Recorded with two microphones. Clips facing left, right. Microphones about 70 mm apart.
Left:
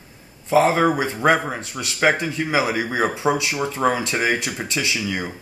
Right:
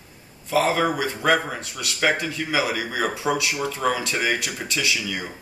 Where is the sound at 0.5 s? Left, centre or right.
Left.